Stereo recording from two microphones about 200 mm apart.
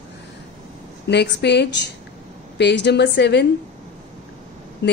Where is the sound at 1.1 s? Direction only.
55° left (ahead or behind).